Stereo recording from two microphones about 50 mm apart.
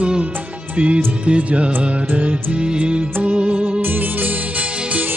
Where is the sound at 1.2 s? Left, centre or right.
Right.